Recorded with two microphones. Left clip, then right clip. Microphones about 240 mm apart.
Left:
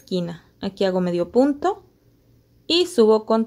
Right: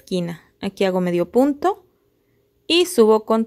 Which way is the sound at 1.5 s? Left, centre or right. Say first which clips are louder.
Right 2 dB; right.